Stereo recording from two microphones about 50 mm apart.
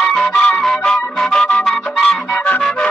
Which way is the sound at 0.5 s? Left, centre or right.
Centre.